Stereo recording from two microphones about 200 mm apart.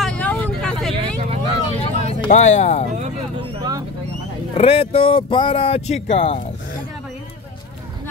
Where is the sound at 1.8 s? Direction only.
35° left (ahead or behind).